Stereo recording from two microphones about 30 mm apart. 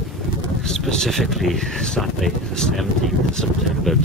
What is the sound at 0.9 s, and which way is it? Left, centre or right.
Speech, centre.